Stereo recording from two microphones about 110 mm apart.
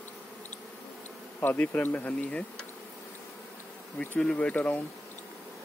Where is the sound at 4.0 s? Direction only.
15° left (ahead or behind).